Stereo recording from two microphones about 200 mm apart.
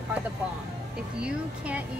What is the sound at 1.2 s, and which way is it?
Speech, 5° right (ahead or behind).